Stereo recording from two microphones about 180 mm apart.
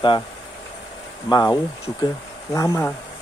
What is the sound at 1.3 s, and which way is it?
Speech, 20° left (ahead or behind).